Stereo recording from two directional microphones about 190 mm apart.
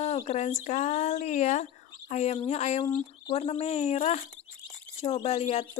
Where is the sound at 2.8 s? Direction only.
20° left (ahead or behind).